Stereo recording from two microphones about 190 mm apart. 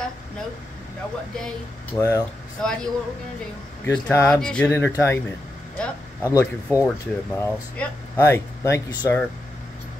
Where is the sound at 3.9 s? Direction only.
5° left (ahead or behind).